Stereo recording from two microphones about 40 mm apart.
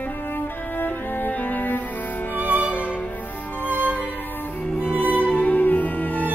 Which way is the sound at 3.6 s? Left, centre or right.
Left.